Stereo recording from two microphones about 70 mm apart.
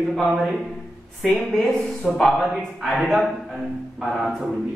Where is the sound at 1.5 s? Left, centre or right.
Centre.